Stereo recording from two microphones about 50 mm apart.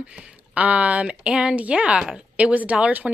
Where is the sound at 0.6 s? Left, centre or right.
Right.